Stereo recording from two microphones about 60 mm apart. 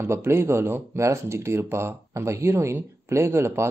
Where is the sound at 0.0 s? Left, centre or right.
Right.